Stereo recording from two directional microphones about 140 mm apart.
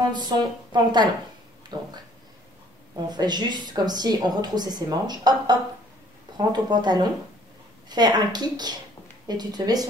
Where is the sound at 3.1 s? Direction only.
30° right (ahead or behind).